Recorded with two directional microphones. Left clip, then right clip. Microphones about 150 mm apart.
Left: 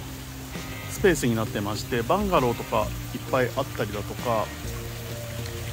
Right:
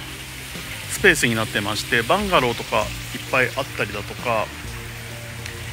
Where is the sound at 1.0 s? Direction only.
5° left (ahead or behind).